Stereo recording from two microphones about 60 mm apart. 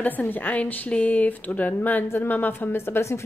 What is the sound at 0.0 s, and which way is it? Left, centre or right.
Speech, left.